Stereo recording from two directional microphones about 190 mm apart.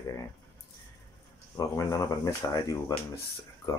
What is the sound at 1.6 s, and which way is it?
Speech, 20° left (ahead or behind).